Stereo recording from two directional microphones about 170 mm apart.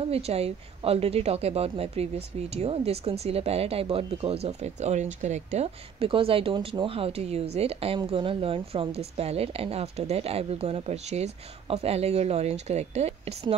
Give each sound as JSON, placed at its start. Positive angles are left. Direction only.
{"t": 0.1, "sound": "a woman's voice", "side_deg": -35}